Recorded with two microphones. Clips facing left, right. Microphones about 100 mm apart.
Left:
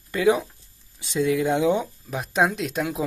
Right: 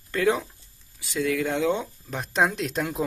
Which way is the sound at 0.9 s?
20° left (ahead or behind).